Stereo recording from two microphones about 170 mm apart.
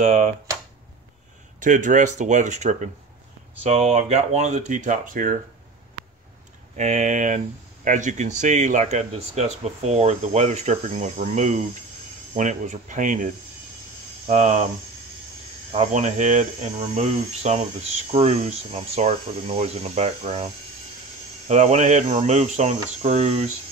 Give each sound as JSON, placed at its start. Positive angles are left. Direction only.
{"t": 0.0, "sound": "speech", "side_deg": -45}
{"t": 1.6, "sound": "speech", "side_deg": -50}
{"t": 6.8, "sound": "speech", "side_deg": -45}
{"t": 15.7, "sound": "speech", "side_deg": -40}